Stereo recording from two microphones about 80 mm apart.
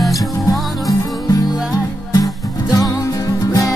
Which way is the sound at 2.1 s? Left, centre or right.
Left.